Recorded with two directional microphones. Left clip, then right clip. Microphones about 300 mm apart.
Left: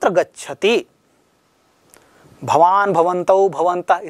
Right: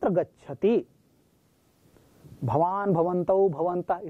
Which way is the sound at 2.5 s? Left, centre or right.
Centre.